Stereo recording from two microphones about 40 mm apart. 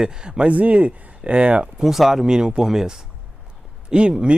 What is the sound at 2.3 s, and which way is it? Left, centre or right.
Speech, centre.